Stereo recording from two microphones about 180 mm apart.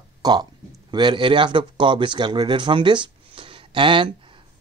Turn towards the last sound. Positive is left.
turn(degrees=-25)  # may be behind; listen again after turning